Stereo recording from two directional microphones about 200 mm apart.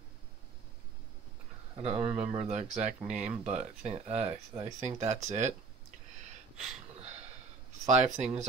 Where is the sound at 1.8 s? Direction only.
30° right (ahead or behind).